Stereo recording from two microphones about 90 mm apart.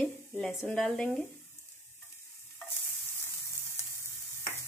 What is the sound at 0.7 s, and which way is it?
Speech, 5° left (ahead or behind).